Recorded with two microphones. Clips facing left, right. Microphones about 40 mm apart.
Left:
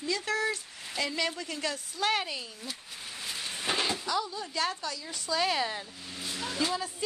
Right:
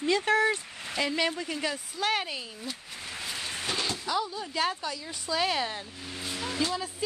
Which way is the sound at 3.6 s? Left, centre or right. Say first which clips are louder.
Left 2 dB; centre.